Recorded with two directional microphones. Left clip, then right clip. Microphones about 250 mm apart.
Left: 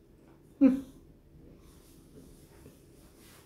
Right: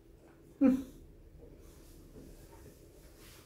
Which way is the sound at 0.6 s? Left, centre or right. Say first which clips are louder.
Left 4 dB; left.